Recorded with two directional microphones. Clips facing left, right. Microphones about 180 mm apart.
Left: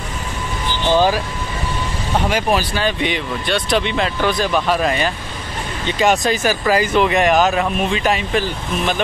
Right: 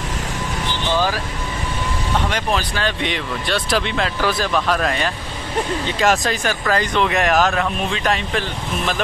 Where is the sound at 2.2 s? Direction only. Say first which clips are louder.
Left 4 dB; 10° left (ahead or behind).